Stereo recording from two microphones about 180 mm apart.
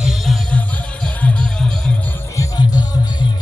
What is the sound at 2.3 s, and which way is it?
Music, 20° left (ahead or behind).